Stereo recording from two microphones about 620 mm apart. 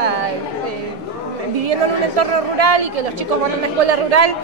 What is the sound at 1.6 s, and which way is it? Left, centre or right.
A woman's voice, right.